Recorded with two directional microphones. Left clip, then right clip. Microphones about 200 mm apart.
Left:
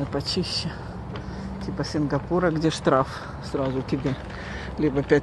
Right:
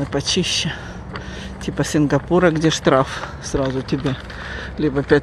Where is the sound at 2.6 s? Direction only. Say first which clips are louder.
Right 5 dB; 20° right (ahead or behind).